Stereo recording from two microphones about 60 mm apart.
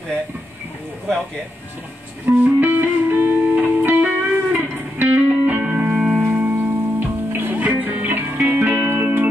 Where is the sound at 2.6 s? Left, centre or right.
Right.